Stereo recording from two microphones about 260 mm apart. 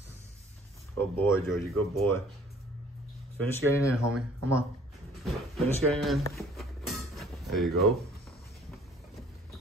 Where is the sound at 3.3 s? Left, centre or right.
Centre.